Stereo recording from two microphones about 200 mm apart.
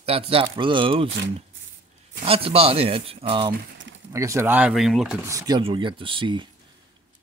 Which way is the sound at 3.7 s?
65° right (ahead or behind).